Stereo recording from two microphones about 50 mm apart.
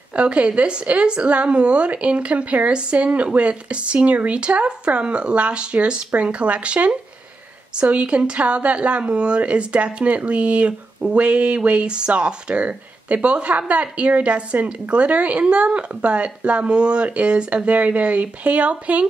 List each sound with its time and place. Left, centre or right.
0.1 s speech: right